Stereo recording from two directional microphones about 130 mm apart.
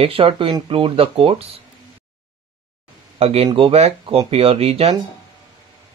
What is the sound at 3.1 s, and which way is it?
Speech, 50° right (ahead or behind).